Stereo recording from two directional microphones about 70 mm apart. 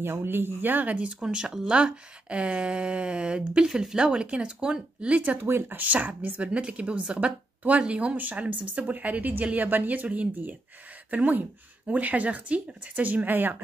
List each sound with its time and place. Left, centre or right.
0.0 s speech: right